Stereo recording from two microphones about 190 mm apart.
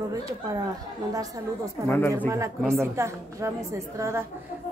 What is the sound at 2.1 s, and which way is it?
A woman's voice, 15° right (ahead or behind).